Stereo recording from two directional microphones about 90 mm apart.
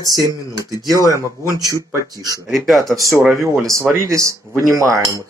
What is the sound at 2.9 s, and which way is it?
Speech, 40° right (ahead or behind).